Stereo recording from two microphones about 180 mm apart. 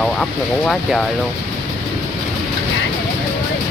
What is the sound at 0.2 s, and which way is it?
Clip-clop, 5° left (ahead or behind).